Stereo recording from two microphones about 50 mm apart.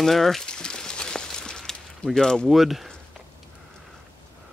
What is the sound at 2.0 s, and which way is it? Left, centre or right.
Speech, left.